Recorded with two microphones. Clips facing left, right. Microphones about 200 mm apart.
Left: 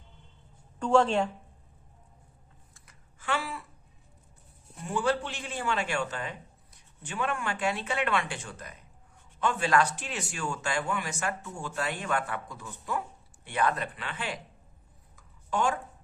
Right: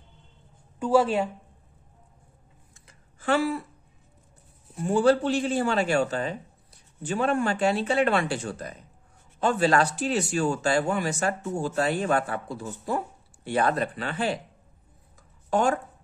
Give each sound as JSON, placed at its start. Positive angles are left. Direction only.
{"t": 0.7, "sound": "a woman's voice", "side_deg": -5}
{"t": 3.2, "sound": "speech", "side_deg": -40}
{"t": 4.8, "sound": "speech", "side_deg": -35}
{"t": 15.1, "sound": "a sound", "side_deg": -40}